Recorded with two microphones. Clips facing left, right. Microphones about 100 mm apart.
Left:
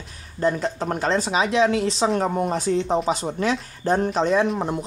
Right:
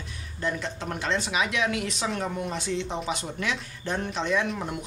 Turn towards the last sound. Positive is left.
turn(degrees=40)  # may be behind; listen again after turning